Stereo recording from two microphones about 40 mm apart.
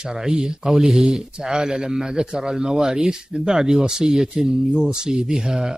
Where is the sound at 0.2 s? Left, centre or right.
Centre.